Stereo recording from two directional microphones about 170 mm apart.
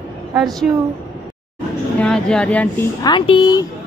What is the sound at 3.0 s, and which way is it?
Speech, 25° left (ahead or behind).